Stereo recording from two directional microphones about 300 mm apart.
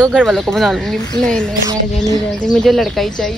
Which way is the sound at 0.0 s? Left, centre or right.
Centre.